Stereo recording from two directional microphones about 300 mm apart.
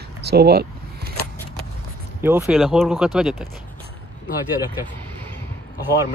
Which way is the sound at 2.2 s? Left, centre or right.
Centre.